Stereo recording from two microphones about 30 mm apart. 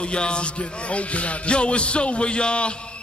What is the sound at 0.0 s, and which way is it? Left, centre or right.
A man's voice, left.